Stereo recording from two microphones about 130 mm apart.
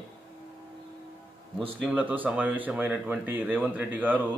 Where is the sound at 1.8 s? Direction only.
10° right (ahead or behind).